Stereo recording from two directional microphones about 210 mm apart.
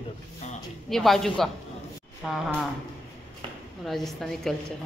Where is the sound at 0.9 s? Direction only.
Centre (ahead or behind).